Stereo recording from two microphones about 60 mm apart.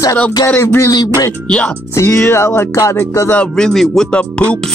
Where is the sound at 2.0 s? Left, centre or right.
Left.